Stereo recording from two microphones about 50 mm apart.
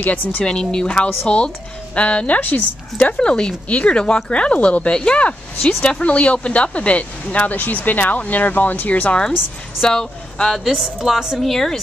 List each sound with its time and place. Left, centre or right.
0.0 s speech: left
0.4 s a woman's voice: centre; by 3.2 s left
3.2 s speech: centre; by 9.1 s left
9.8 s speech: centre
10.6 s a woman's voice: centre
11.3 s a woman's voice: centre